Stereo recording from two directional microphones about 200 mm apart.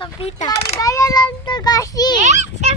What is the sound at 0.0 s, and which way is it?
Speech, 30° left (ahead or behind).